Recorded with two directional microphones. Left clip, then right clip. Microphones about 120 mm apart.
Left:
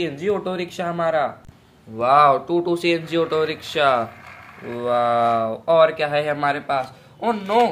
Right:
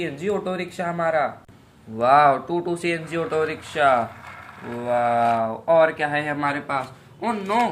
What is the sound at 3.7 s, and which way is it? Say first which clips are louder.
Speech: even; 60° left (ahead or behind).